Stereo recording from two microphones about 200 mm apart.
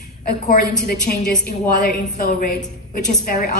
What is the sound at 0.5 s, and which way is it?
A woman's voice, 50° left (ahead or behind).